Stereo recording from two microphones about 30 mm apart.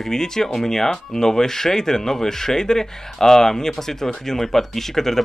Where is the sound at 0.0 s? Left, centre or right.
Centre.